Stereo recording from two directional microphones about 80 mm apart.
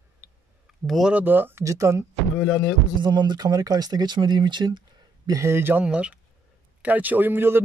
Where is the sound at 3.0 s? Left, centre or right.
Right.